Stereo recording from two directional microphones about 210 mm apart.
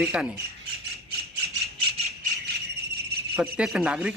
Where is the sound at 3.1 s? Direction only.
50° right (ahead or behind).